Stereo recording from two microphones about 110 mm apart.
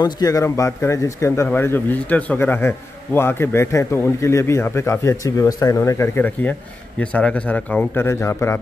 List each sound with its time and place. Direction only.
0.0 s speech: 35° left (ahead or behind)